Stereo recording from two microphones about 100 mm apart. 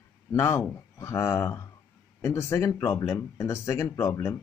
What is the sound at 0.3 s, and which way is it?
Speech, 30° left (ahead or behind).